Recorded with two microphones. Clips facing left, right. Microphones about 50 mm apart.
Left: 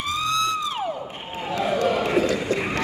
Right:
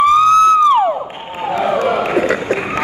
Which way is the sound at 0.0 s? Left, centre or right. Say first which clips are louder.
Right 15 dB; right.